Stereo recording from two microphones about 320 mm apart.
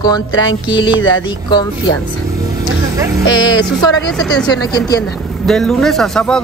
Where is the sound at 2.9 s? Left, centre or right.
Centre.